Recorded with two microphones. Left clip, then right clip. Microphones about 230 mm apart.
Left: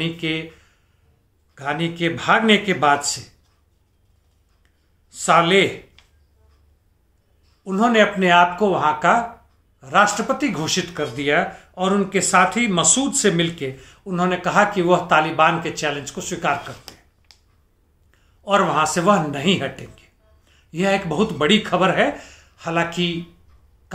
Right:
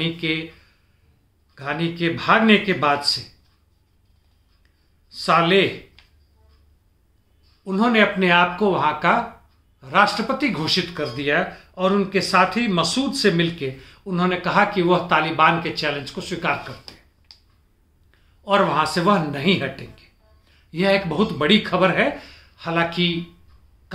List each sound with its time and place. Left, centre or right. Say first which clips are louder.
0.0 s speech: even; centre
1.5 s a man's voice: left 2 dB; centre
5.1 s a man's voice: left 2 dB; centre
7.6 s speech: left 2 dB; centre
16.9 s a sound: even; left
18.4 s speech: left 1 dB; centre